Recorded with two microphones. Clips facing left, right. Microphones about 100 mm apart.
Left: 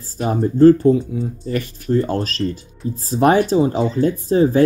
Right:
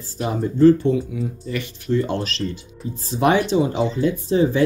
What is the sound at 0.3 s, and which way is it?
Speech, 40° left (ahead or behind).